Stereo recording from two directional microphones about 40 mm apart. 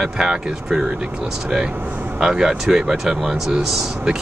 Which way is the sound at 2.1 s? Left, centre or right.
Centre.